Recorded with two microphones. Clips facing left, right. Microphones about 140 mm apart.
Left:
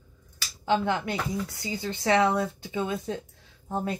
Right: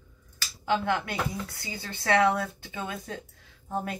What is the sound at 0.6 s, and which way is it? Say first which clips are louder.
Speech: left 2 dB; 20° left (ahead or behind).